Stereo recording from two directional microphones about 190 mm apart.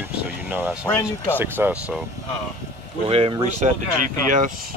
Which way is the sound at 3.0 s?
30° right (ahead or behind).